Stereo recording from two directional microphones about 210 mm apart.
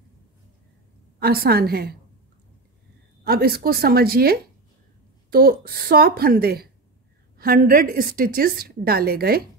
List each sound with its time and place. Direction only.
1.2 s a woman's voice: 45° right (ahead or behind)
3.3 s a woman's voice: 45° right (ahead or behind)